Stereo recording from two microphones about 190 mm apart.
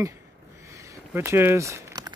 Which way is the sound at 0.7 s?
15° right (ahead or behind).